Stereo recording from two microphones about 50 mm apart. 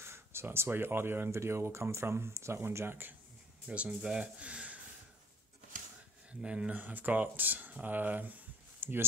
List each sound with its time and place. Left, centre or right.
0.0 s speech: right
1.3 s speech: right
3.6 s speech: right
6.4 s speech: centre
6.7 s speech: right
8.8 s speech: right